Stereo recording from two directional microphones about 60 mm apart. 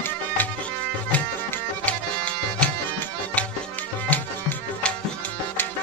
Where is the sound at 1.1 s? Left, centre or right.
Left.